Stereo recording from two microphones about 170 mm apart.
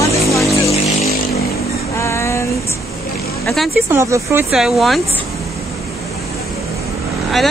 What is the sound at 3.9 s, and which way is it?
Speech, 15° right (ahead or behind).